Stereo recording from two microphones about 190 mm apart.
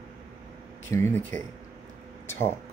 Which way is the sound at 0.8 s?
15° left (ahead or behind).